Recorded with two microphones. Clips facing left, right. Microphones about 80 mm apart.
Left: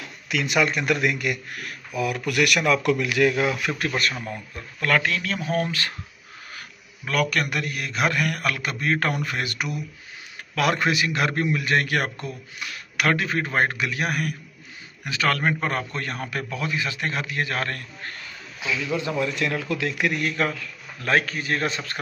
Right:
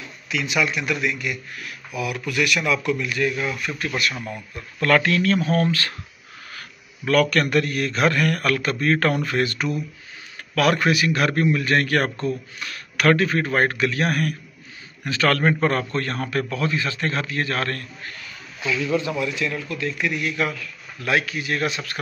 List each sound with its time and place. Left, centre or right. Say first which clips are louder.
0.0 s speech: even; left
2.0 s a man's voice: left 2 dB; left
2.2 s speech: left 1 dB; left
2.8 s speech: left 3 dB; left
4.2 s speech: right 1 dB; left
4.7 s a man's voice: right 4 dB; centre
7.1 s a man's voice: right 5 dB; centre
19.0 s a man's voice: even; left
19.3 s speech: even; left
19.8 s a man's voice: right 3 dB; left
20.1 s a man's voice: even; left
21.5 s a man's voice: right 3 dB; left